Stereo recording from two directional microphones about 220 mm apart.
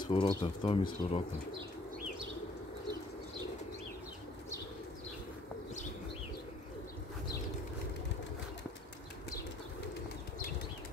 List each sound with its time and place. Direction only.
0.1 s speech: 25° left (ahead or behind)